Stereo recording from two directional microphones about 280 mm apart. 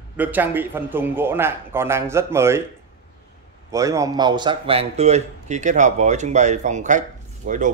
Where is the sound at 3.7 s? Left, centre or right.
Centre.